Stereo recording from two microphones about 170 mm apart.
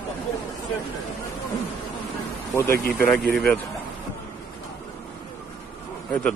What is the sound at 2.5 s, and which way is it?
Speech, 15° left (ahead or behind).